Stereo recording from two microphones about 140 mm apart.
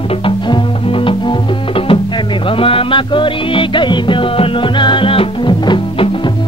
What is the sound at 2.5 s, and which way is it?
Music, 40° left (ahead or behind).